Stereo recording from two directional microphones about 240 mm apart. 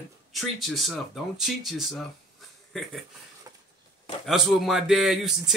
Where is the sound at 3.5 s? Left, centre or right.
Centre.